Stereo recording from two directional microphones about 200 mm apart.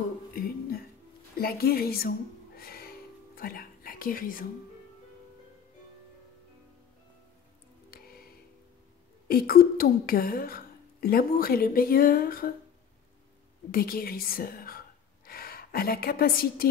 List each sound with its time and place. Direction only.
0.3 s a sound: 45° left (ahead or behind)
1.4 s music: 50° left (ahead or behind)
7.9 s music: 50° left (ahead or behind)
9.3 s a woman's voice: 50° left (ahead or behind)
13.7 s a woman's voice: 45° left (ahead or behind)